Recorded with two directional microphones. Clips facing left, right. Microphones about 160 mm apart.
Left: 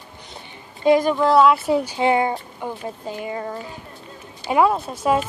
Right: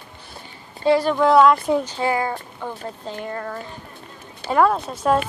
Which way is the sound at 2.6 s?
10° left (ahead or behind).